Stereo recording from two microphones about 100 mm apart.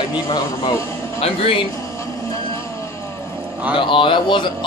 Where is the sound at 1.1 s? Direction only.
80° left.